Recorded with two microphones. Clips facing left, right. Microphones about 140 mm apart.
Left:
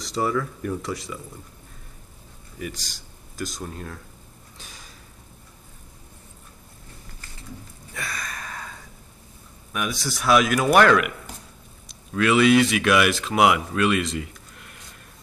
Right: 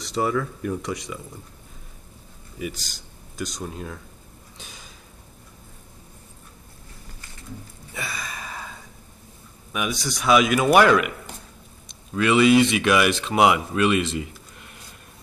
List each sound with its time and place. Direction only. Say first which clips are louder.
0.0 s a man's voice: right 1 dB; centre (ahead or behind)
2.7 s speech: even; centre (ahead or behind)
4.6 s a sound: right 1 dB; centre (ahead or behind)
7.9 s a sound: right 1 dB; 5° right (ahead or behind)
9.7 s a man's voice: right 1 dB; 5° right (ahead or behind)
12.1 s speech: right 1 dB; centre (ahead or behind)